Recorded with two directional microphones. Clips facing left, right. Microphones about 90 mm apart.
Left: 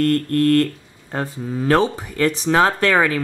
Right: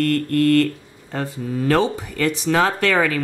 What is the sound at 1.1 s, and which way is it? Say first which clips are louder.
Speech: even; 25° left (ahead or behind).